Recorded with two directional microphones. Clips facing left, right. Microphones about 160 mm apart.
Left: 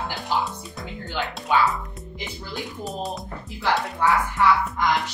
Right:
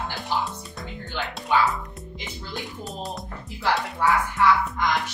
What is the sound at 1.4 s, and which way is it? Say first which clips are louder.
Speech: left 1 dB; centre (ahead or behind).